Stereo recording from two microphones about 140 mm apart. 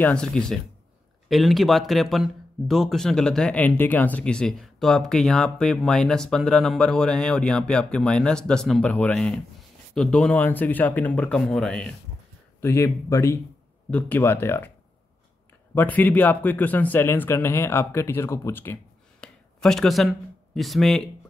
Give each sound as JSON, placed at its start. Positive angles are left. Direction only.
{"t": 0.0, "sound": "speech", "side_deg": 5}
{"t": 12.5, "sound": "speech", "side_deg": 20}
{"t": 13.8, "sound": "speech", "side_deg": 10}
{"t": 15.7, "sound": "speech", "side_deg": 15}
{"t": 19.2, "sound": "speech", "side_deg": 5}